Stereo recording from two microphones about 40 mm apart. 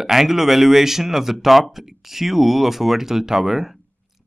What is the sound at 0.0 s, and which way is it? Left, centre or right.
Speech, centre.